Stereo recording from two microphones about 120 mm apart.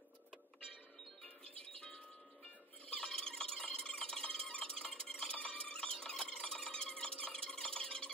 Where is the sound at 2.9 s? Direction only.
5° left (ahead or behind).